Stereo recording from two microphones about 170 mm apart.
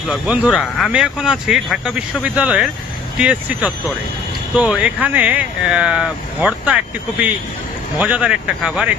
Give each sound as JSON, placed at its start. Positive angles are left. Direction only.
{"t": 0.1, "sound": "speech", "side_deg": 0}